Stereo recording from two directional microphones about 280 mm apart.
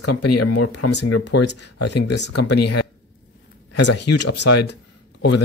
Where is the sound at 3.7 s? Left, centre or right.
Left.